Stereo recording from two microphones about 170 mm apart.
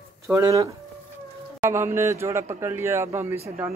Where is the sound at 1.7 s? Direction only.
15° right (ahead or behind).